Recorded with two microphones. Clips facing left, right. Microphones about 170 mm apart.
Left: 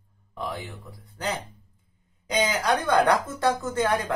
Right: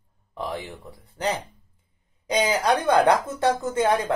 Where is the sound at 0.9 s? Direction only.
35° right (ahead or behind).